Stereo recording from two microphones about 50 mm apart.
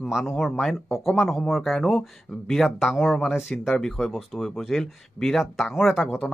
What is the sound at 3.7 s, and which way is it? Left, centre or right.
A man's voice, centre.